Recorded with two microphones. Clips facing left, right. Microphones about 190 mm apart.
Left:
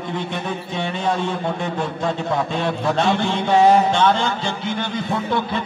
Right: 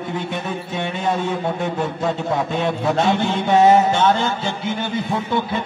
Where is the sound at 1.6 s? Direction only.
5° right (ahead or behind).